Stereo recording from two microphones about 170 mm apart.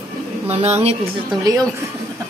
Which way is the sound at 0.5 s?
40° right (ahead or behind).